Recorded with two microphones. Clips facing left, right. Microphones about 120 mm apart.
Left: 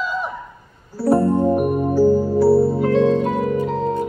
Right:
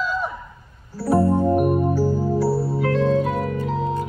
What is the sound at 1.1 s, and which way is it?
Music, centre (ahead or behind).